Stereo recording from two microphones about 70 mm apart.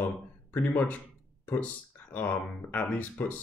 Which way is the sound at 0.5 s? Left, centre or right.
Left.